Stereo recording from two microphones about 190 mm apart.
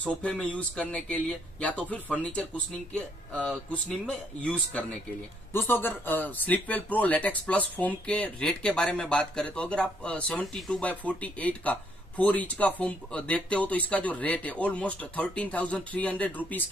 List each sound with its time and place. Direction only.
0.2 s speech: 10° left (ahead or behind)